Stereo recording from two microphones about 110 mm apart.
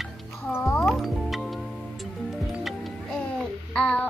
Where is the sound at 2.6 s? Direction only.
Centre (ahead or behind).